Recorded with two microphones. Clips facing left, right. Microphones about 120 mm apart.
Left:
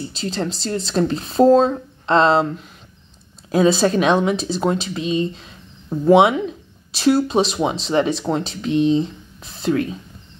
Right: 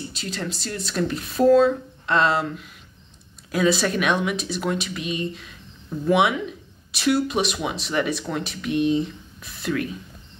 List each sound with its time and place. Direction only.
0.1 s speech: 30° left (ahead or behind)